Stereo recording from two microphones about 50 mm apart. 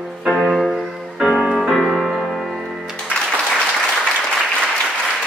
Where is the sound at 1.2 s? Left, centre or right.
Centre.